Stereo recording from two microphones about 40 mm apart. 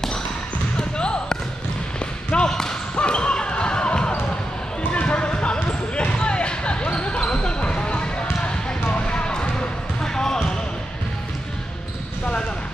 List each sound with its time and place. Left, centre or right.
0.7 s basketball bounce: left
2.5 s basketball bounce: centre